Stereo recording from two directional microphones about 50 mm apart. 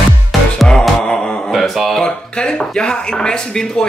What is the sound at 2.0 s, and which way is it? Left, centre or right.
Speech, centre.